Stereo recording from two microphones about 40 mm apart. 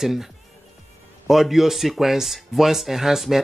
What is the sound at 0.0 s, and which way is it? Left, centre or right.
Speech, centre.